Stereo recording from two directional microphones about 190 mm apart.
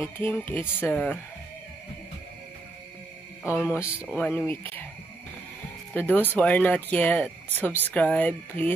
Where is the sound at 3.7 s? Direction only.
15° left (ahead or behind).